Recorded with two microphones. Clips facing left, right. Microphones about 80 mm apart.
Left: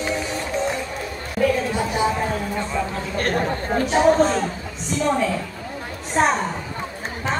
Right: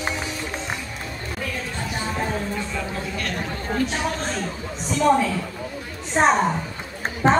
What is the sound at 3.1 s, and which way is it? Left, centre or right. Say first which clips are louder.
Chatter: left 11 dB; left.